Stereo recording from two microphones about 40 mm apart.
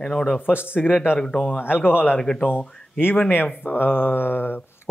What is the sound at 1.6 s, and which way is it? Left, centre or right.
Mantra, left.